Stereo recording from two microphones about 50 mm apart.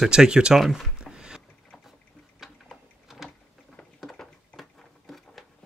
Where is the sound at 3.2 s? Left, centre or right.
Centre.